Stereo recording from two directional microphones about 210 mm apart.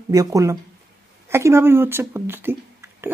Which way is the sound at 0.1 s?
15° right (ahead or behind).